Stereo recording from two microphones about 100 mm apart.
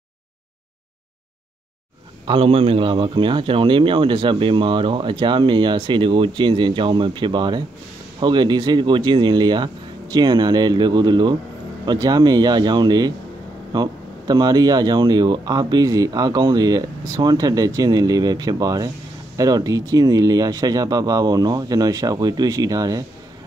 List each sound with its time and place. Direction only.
2.2 s a man's voice: 65° right (ahead or behind); by 23.0 s 35° right (ahead or behind)